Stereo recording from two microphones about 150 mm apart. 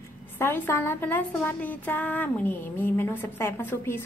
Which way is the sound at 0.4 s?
15° left (ahead or behind).